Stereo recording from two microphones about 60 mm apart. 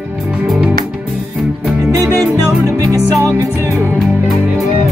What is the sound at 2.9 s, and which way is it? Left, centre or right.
Music, right.